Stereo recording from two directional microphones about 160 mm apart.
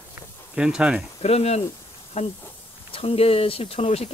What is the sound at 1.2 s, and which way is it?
Speech, 40° left (ahead or behind).